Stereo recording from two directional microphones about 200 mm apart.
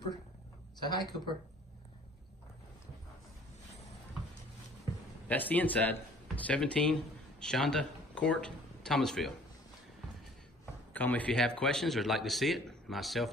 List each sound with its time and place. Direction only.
0.8 s speech: 20° left (ahead or behind)
5.3 s speech: 10° left (ahead or behind)
10.9 s a man's voice: 10° left (ahead or behind)